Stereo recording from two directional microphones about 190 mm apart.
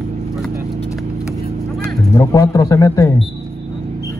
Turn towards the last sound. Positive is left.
turn(degrees=20)  # may be behind; listen again after turning